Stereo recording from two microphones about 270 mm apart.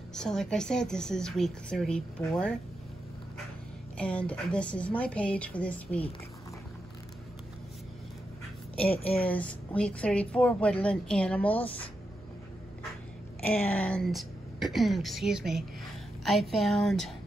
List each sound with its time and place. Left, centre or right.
0.1 s speech: centre
4.0 s speech: centre
8.9 s speech: left
9.2 s speech: centre
13.7 s speech: centre